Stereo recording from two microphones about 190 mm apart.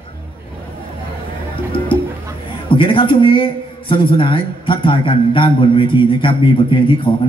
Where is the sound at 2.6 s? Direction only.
25° left (ahead or behind).